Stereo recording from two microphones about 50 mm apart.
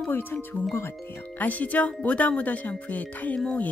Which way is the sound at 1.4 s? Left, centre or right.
Left.